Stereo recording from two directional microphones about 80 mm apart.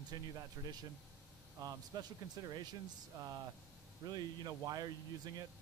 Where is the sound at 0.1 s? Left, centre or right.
Right.